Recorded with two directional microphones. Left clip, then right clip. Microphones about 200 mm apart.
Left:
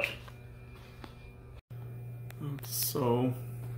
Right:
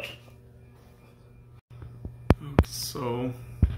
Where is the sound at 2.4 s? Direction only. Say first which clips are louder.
Right 11 dB; 15° left (ahead or behind).